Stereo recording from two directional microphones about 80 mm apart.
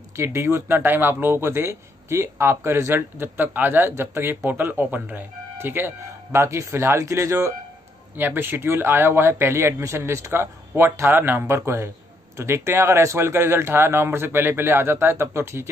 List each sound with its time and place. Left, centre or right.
0.2 s speech: right
6.3 s speech: right
8.2 s speech: right